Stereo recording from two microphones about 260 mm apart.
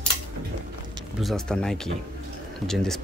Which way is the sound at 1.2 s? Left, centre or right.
Centre.